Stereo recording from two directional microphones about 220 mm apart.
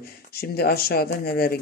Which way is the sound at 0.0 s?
45° left (ahead or behind).